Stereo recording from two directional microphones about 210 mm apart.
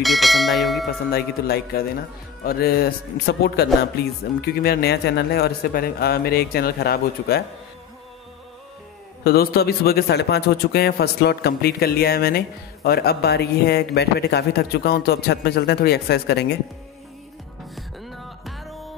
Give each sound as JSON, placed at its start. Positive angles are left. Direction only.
{"t": 0.0, "sound": "speech", "side_deg": 0}
{"t": 1.1, "sound": "a man's voice", "side_deg": 45}
{"t": 9.2, "sound": "a man's voice", "side_deg": 50}
{"t": 17.7, "sound": "music", "side_deg": 0}